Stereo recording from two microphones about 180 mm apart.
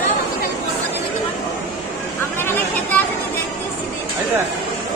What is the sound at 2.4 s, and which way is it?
Speech, 10° left (ahead or behind).